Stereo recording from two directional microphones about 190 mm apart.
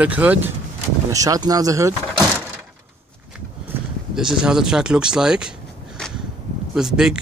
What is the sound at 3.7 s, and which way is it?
Speech, 5° right (ahead or behind).